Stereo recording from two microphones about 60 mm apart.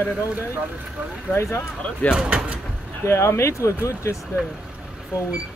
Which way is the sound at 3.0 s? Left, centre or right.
Left.